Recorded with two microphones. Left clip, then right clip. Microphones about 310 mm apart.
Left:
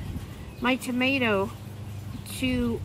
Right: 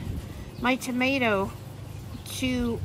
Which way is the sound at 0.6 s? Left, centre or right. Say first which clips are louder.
Even; centre.